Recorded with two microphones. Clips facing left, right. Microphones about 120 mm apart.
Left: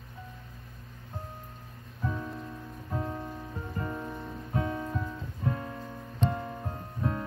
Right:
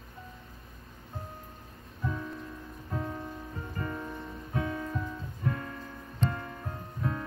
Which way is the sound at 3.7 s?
20° left (ahead or behind).